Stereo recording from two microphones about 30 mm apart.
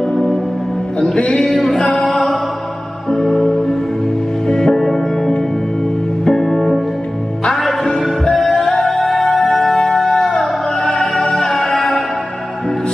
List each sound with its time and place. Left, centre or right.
1.1 s music: left
3.3 s music: centre
6.4 s music: centre
8.3 s music: centre